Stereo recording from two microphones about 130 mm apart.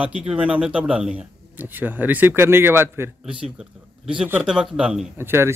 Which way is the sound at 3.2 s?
5° right (ahead or behind).